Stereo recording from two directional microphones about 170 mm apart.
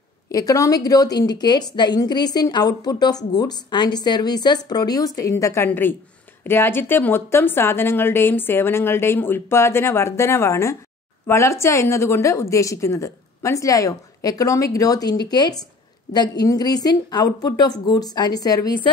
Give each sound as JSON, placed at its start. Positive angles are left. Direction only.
{"t": 0.3, "sound": "a woman's voice", "side_deg": 20}